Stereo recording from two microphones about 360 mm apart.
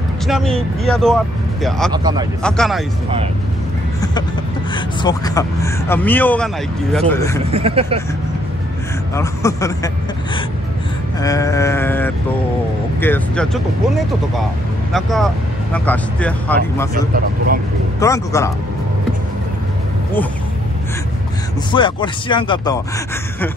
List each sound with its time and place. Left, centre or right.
0.3 s speech: centre
4.7 s a man's voice: centre
7.5 s speech: centre
9.1 s a man's voice: centre
11.1 s a man's voice: centre
14.9 s speech: centre
16.9 s speech: right
18.0 s a man's voice: centre
21.7 s a man's voice: centre